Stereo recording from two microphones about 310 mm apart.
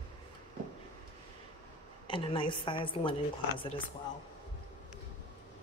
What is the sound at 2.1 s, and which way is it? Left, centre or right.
A woman's voice, centre.